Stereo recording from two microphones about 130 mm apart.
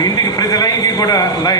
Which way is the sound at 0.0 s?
30° left (ahead or behind).